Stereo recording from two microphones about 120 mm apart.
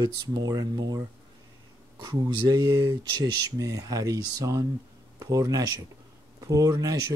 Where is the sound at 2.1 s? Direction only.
35° right (ahead or behind).